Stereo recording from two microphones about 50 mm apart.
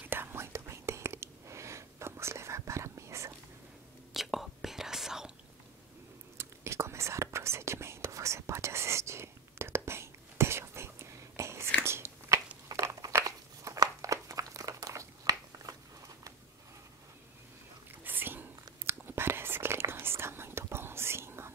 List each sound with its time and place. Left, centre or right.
0.0 s whispering: right
4.1 s whispering: centre
6.3 s whispering: right
11.8 s biting: right
12.7 s crumpling: right
18.0 s whispering: right